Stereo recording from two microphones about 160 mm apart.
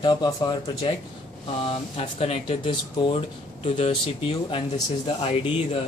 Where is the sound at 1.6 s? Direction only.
35° left (ahead or behind).